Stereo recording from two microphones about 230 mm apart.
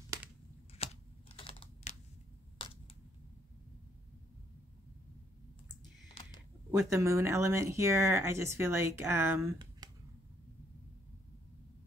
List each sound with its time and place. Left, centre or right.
0.8 s computer keyboard: left
2.6 s a sound: left
6.9 s speech: centre